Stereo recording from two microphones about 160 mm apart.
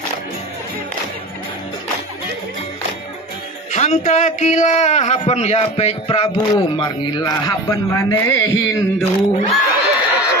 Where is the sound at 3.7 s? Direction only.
45° left (ahead or behind); by 8.3 s 20° left (ahead or behind).